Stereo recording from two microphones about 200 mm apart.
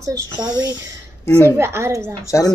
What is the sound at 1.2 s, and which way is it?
Speech, 10° left (ahead or behind).